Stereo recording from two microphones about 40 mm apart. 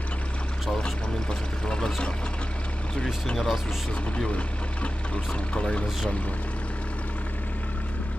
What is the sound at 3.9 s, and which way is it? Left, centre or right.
Speech, left.